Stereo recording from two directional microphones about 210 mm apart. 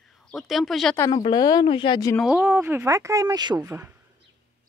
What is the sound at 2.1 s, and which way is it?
Speech, centre (ahead or behind).